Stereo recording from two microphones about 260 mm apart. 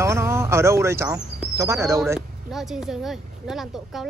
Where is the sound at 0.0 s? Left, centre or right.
Centre.